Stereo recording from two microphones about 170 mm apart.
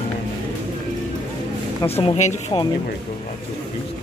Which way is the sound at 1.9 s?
35° left (ahead or behind).